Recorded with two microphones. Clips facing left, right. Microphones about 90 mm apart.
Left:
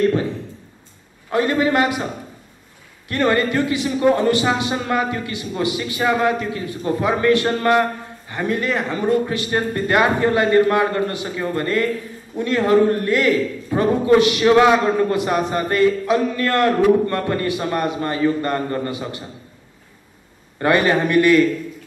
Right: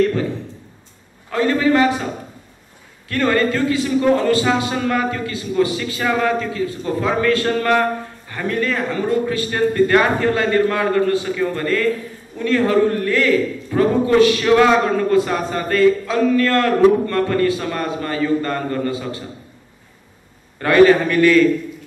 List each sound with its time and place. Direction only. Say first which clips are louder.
1.3 s a man's voice: right 1 dB; 20° left (ahead or behind)
3.1 s a man's voice: right 1 dB; 20° left (ahead or behind)
20.5 s a man's voice: right 5 dB; 20° left (ahead or behind)